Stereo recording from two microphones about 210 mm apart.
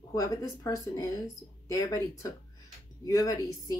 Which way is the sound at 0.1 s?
15° left (ahead or behind).